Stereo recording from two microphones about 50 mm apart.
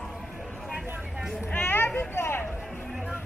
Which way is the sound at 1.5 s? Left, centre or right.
Left.